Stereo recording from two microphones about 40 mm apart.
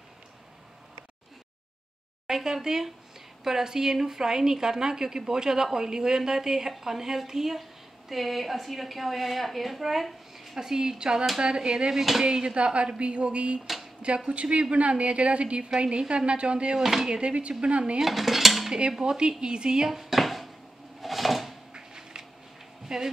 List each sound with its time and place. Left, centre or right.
2.2 s a woman's voice: centre
11.9 s a woman's voice: centre
12.3 s speech: right
16.7 s a woman's voice: centre
17.2 s speech: right
18.0 s dishes: centre
18.7 s speech: centre
19.9 s dishes: centre
21.0 s a sound: centre
21.7 s a sound: centre
22.9 s a woman's voice: centre